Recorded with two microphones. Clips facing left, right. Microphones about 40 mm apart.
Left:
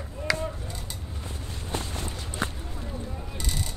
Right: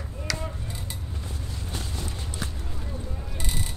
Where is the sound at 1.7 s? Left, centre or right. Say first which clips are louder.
Left 4 dB; left.